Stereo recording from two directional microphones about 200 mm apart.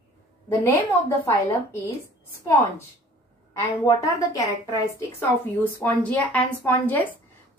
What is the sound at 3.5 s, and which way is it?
A woman's voice, 15° left (ahead or behind).